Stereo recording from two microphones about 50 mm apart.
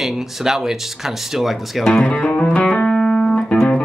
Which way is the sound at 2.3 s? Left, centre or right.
Left.